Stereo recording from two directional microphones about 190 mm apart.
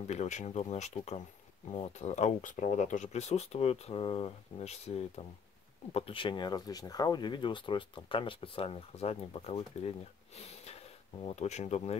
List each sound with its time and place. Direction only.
0.0 s speech: 35° left (ahead or behind)